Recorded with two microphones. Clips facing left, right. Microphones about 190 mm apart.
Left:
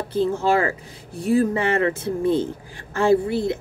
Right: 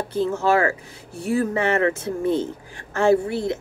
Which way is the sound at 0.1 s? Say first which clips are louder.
Left 1 dB; 30° left (ahead or behind).